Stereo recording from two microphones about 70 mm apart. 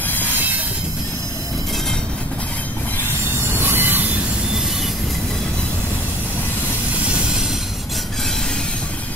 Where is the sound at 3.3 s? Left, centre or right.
Right.